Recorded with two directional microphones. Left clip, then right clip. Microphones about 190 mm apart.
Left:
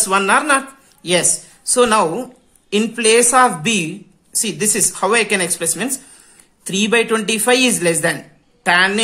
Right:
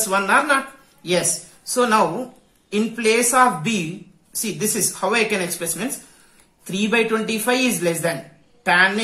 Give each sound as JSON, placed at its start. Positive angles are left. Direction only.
{"t": 0.0, "sound": "speech", "side_deg": 50}